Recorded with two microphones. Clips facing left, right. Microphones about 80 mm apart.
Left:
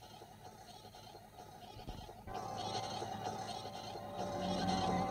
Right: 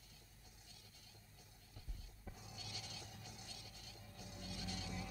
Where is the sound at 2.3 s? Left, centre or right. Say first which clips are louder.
Left 15 dB; left.